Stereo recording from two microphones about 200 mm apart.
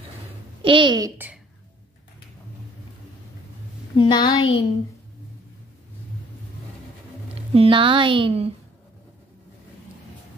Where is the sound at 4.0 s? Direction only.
20° left (ahead or behind).